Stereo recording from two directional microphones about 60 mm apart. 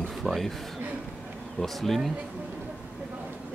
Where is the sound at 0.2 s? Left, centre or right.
Centre.